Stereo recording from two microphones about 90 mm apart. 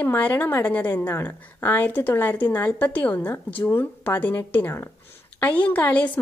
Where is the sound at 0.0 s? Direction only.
20° left (ahead or behind).